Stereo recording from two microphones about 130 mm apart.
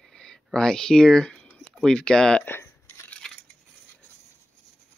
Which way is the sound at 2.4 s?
15° left (ahead or behind).